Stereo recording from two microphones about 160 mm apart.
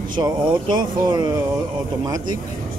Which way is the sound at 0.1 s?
30° right (ahead or behind).